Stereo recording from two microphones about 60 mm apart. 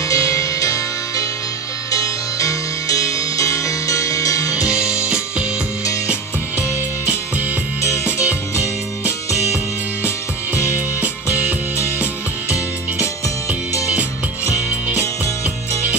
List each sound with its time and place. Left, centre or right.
0.1 s music: left
4.6 s music: centre
10.0 s music: left